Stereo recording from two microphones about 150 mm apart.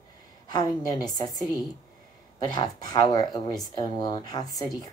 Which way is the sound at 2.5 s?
30° left (ahead or behind).